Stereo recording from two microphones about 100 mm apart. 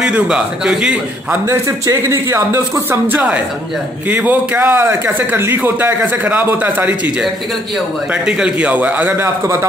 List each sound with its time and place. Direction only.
0.0 s a man's voice: 10° right (ahead or behind)
1.5 s a man's voice: 30° right (ahead or behind); by 9.2 s 15° right (ahead or behind)
9.2 s speech: 30° right (ahead or behind)